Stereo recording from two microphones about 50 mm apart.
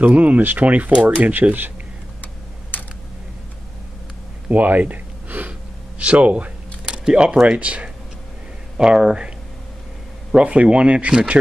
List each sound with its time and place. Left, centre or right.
0.0 s speech: right
2.7 s typing: left
4.5 s a sound: right
5.9 s speech: right
8.7 s speech: centre
10.3 s speech: right